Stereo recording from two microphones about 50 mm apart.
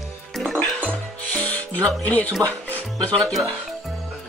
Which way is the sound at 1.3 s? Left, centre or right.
Left.